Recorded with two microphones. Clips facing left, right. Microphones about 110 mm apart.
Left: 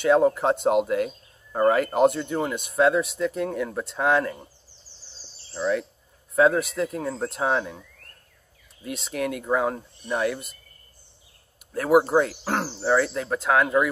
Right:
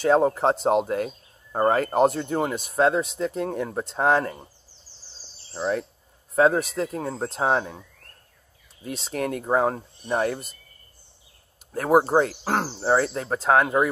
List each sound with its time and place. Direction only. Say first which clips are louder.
0.0 s speech: even; 35° right (ahead or behind)
5.5 s speech: left 1 dB; 35° right (ahead or behind)
8.8 s speech: even; 35° right (ahead or behind)
11.7 s speech: even; 35° right (ahead or behind)